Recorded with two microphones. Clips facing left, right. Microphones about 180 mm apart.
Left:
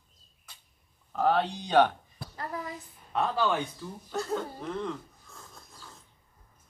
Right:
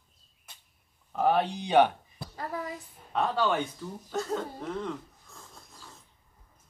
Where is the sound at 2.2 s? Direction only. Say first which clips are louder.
Right 2 dB; 5° right (ahead or behind).